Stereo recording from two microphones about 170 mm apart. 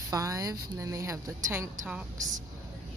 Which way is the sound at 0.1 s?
20° right (ahead or behind).